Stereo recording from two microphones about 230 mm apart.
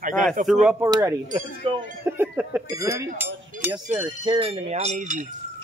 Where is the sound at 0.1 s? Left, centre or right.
Centre.